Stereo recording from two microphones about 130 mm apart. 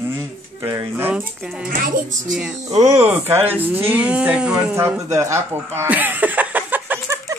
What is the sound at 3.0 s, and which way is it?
Speech, 15° right (ahead or behind).